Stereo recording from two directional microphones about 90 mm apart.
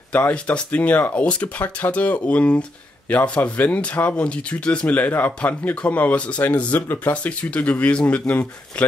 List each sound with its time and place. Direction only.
0.1 s speech: 15° left (ahead or behind)